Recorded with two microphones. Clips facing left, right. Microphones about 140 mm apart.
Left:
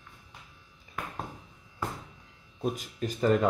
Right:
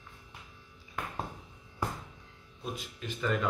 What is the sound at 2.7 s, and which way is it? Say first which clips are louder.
Speech: left 6 dB; 40° left (ahead or behind).